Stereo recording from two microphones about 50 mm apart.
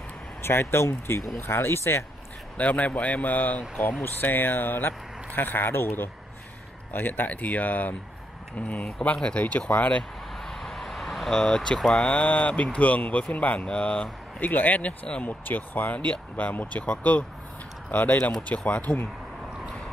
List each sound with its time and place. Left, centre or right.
0.4 s speech: left
2.5 s speech: left
6.9 s speech: left
10.4 s vehicle: centre
12.0 s speech: left
14.4 s speech: left
15.2 s speech: left